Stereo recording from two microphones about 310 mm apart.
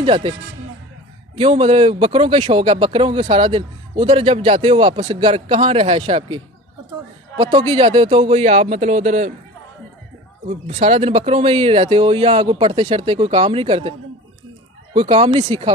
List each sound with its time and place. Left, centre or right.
0.0 s speech: centre
10.5 s speech: centre
15.0 s speech: centre